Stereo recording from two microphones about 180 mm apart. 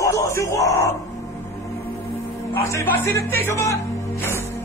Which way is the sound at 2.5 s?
15° left (ahead or behind).